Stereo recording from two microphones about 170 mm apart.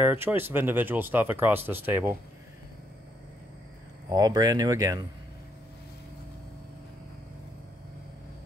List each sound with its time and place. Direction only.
0.0 s speech: 10° right (ahead or behind)
4.1 s speech: 25° right (ahead or behind)